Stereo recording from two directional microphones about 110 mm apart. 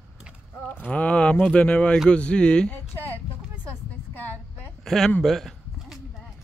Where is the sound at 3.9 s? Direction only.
15° left (ahead or behind).